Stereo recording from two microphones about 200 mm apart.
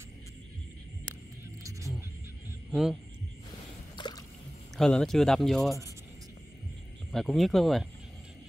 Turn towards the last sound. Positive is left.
turn(degrees=0)  # may be behind; listen again after turning